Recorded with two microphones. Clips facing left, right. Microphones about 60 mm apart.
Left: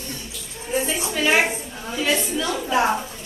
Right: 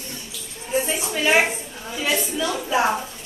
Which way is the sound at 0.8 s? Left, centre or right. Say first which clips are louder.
Left 2 dB; centre.